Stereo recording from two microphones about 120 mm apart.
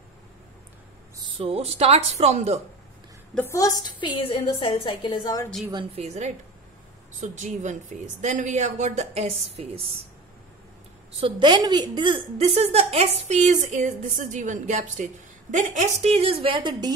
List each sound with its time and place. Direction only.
1.4 s speech: 55° right (ahead or behind)
3.4 s a woman's voice: 30° left (ahead or behind)
4.2 s a woman's voice: 50° left (ahead or behind)
5.9 s a woman's voice: 65° right (ahead or behind)
7.2 s a woman's voice: 90° right; by 9.8 s 60° right (ahead or behind)
11.1 s a woman's voice: 45° right (ahead or behind)
12.4 s a woman's voice: 60° right (ahead or behind); by 16.1 s 85° right
16.2 s a woman's voice: 50° right (ahead or behind)